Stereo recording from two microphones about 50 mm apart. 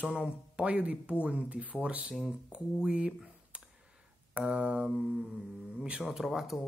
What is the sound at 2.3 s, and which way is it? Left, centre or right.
Speech, centre.